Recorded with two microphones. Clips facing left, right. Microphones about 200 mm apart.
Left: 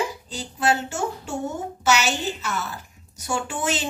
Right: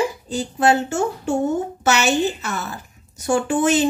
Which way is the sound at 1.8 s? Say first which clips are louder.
Right 3 dB; 50° right (ahead or behind).